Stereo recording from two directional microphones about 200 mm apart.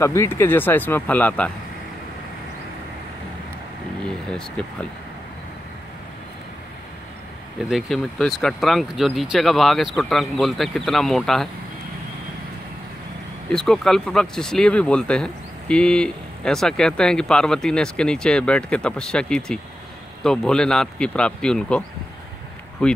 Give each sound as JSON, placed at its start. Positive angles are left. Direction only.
{"t": 0.0, "sound": "speech", "side_deg": 15}
{"t": 4.6, "sound": "speech", "side_deg": 5}
{"t": 7.7, "sound": "speech", "side_deg": 0}
{"t": 13.5, "sound": "speech", "side_deg": 5}